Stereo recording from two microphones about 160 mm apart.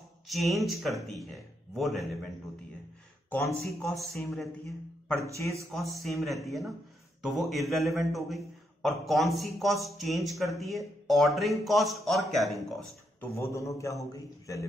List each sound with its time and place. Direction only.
0.3 s a man's voice: centre (ahead or behind)
3.4 s a man's voice: centre (ahead or behind)
13.2 s a man's voice: 20° left (ahead or behind)